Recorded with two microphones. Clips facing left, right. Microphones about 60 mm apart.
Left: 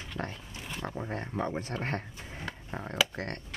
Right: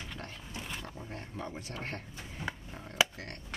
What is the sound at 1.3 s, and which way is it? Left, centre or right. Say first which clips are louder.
Speech: left 8 dB; left.